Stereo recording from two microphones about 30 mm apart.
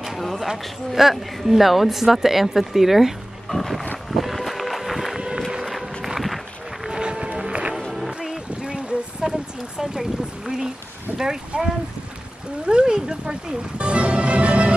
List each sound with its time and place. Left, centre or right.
0.2 s a sound: centre
0.9 s speech: centre
3.4 s wild animals: centre
4.1 s vehicle: centre
5.6 s run: centre
7.0 s music: right
8.2 s music: centre
8.6 s a sound: right
9.2 s a sound: right
11.1 s boat: right
11.5 s speech: right
12.6 s speech: right
13.7 s music: right